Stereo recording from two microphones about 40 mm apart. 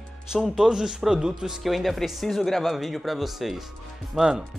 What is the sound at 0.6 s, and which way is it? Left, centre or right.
Speech, centre.